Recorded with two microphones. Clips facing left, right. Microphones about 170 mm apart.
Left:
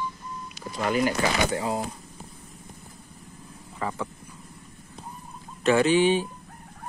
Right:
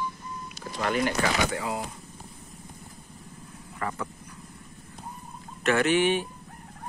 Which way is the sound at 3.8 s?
10° left (ahead or behind).